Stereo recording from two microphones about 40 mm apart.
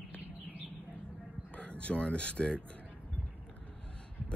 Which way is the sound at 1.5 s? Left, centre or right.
Left.